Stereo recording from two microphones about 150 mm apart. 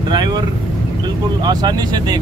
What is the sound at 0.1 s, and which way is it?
Vehicle, 30° right (ahead or behind).